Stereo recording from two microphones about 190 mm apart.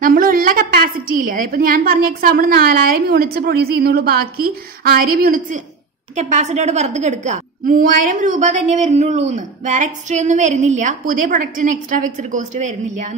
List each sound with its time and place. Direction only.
0.0 s a woman's voice: 50° right (ahead or behind)
6.1 s a woman's voice: 35° right (ahead or behind)